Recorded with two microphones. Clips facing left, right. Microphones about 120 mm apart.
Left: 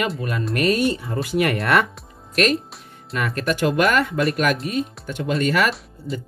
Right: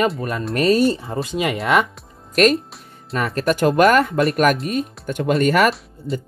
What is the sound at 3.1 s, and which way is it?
Speech, 35° right (ahead or behind).